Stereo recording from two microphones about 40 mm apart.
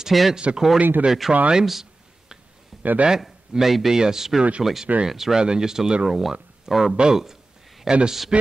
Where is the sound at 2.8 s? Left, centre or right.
Right.